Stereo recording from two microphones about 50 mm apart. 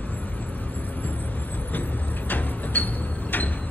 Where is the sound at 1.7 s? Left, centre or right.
Left.